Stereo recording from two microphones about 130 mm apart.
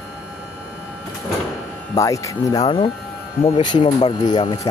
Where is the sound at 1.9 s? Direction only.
25° left (ahead or behind).